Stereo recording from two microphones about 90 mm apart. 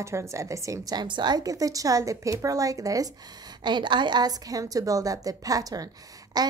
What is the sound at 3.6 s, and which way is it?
A woman's voice, 60° right (ahead or behind).